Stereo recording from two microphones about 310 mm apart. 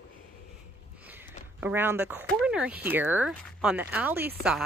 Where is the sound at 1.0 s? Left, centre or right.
Centre.